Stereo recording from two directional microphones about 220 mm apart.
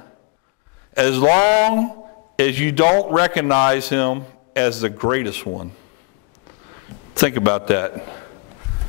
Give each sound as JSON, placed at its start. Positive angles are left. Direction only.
{"t": 0.9, "sound": "a man's voice", "side_deg": 15}
{"t": 1.2, "sound": "speech", "side_deg": 30}
{"t": 2.3, "sound": "a man's voice", "side_deg": 15}
{"t": 7.2, "sound": "a man's voice", "side_deg": 15}